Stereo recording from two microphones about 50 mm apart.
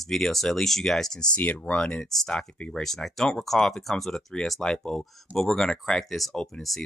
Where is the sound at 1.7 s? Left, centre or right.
Left.